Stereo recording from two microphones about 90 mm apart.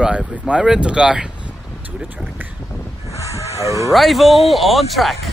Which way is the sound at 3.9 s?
Centre (ahead or behind).